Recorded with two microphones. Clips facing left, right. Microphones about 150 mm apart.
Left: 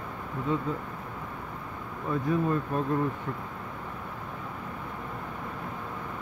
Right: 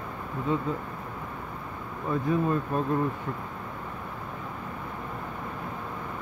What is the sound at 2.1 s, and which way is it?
Speech, 25° right (ahead or behind).